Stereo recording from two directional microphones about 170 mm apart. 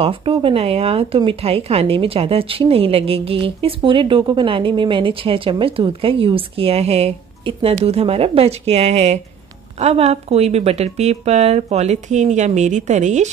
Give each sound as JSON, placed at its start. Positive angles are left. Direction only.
{"t": 0.0, "sound": "a woman's voice", "side_deg": -35}